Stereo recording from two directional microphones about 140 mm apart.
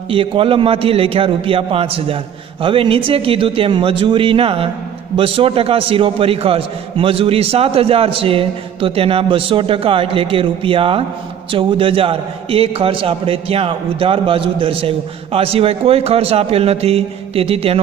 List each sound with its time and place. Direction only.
0.1 s a man's voice: 40° right (ahead or behind)